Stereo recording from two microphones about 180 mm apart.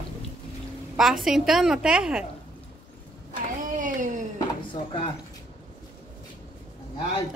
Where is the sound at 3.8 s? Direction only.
45° right (ahead or behind).